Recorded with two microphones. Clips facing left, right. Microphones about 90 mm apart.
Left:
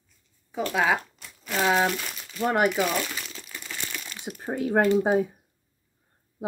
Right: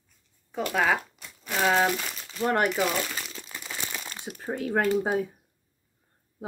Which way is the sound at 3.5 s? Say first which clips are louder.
Even; 15° right (ahead or behind).